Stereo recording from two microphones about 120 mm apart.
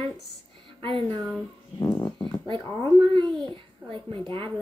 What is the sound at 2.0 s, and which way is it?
Speech, 40° left (ahead or behind).